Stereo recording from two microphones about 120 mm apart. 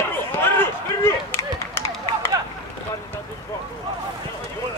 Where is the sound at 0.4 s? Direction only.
20° left (ahead or behind).